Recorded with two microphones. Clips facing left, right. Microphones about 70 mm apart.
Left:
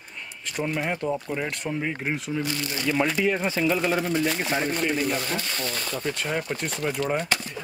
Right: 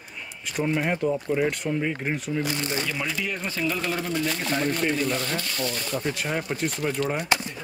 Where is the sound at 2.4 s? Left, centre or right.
Right.